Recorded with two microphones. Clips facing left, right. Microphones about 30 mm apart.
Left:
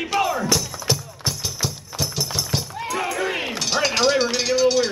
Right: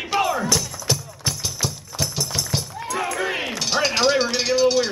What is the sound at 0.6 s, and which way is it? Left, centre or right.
Music, centre.